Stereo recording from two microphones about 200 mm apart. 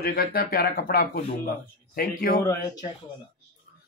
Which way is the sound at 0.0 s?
50° left (ahead or behind).